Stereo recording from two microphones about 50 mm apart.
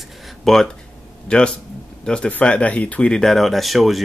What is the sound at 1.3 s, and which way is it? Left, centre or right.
Speech, centre.